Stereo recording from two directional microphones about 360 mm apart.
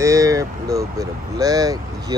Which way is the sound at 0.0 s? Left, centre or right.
Centre.